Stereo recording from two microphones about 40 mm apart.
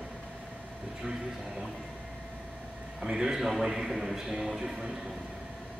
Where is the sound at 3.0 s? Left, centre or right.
Centre.